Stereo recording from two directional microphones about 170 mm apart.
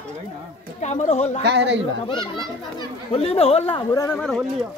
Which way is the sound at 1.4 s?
90° right.